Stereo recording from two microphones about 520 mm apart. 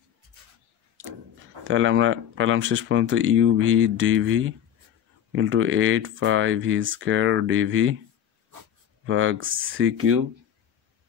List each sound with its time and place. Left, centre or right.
1.6 s speech: right
9.0 s speech: right